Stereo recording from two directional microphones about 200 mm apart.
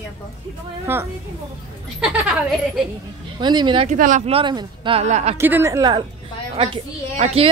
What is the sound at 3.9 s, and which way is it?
A woman's voice, 40° right (ahead or behind).